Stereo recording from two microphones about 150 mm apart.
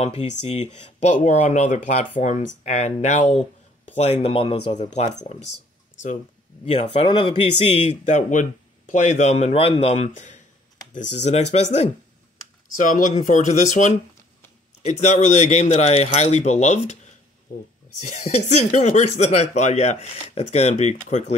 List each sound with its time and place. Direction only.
0.0 s speech: 40° left (ahead or behind)
1.0 s speech: 50° left (ahead or behind); by 4.7 s 35° left (ahead or behind)
4.7 s speech: 50° left (ahead or behind)
6.6 s speech: 40° left (ahead or behind)
12.7 s speech: 60° left (ahead or behind)
17.5 s speech: 65° left (ahead or behind)
18.0 s speech: 50° left (ahead or behind)